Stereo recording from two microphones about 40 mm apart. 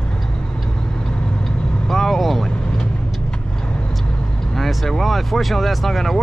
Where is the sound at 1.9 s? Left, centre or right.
Centre.